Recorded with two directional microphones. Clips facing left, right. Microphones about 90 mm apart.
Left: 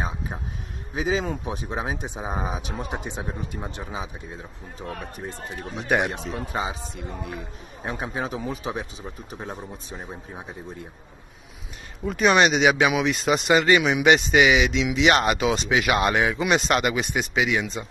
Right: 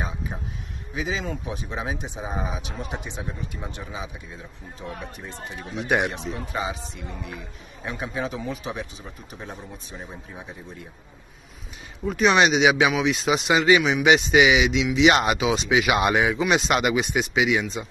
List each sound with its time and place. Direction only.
0.9 s a man's voice: 40° left (ahead or behind)
6.3 s a man's voice: 30° left (ahead or behind)
12.0 s speech: centre (ahead or behind)